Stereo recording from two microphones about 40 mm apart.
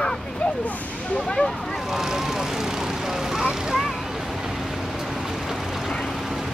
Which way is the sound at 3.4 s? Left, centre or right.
Centre.